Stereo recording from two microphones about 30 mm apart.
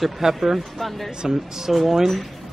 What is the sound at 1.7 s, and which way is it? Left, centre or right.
Speech, centre.